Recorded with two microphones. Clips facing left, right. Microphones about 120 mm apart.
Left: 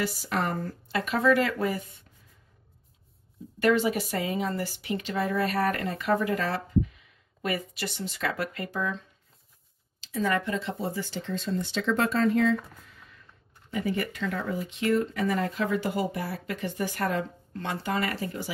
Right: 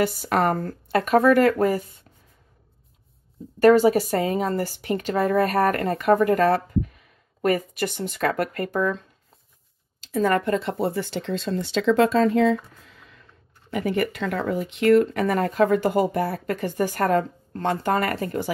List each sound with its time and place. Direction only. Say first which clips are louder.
0.0 s speech: right 8 dB; 55° right (ahead or behind)
3.5 s speech: right 9 dB; 40° right (ahead or behind); by 12.4 s 90° right
13.7 s speech: right 5 dB; 70° right (ahead or behind); by 18.5 s 55° right (ahead or behind)